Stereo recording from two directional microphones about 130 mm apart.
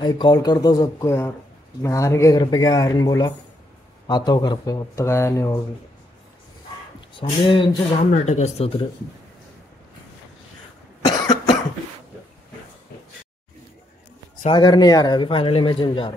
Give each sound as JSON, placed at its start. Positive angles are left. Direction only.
{"t": 0.0, "sound": "speech", "side_deg": 35}
{"t": 7.2, "sound": "speech", "side_deg": 40}
{"t": 8.1, "sound": "speech", "side_deg": 60}
{"t": 11.1, "sound": "cough", "side_deg": 35}
{"t": 14.4, "sound": "speech", "side_deg": 35}